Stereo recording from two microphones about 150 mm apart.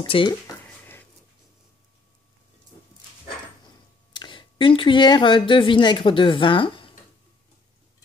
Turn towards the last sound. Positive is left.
turn(degrees=35)  # may be behind; listen again after turning